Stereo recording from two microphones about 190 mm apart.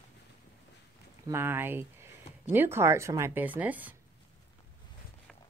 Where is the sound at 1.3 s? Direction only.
10° right (ahead or behind).